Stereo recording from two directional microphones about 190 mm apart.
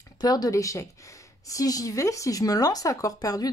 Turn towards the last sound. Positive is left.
turn(degrees=20)  # may be behind; listen again after turning